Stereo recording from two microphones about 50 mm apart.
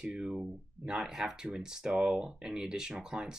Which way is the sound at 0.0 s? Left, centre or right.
Centre.